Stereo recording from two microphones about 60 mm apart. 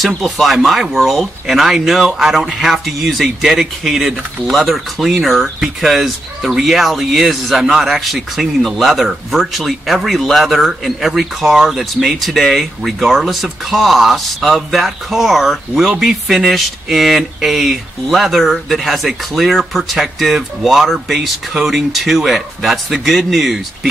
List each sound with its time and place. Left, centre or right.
0.0 s speech: centre